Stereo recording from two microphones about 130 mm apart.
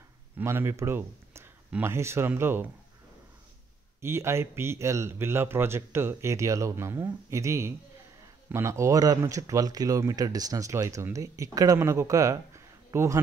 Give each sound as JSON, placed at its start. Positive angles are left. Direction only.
{"t": 0.4, "sound": "speech", "side_deg": -20}
{"t": 4.0, "sound": "speech", "side_deg": -20}